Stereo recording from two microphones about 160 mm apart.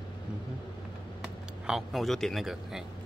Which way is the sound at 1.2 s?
Centre (ahead or behind).